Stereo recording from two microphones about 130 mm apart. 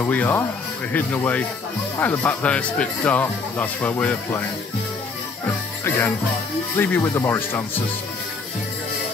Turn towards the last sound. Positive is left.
turn(degrees=20)  # may be behind; listen again after turning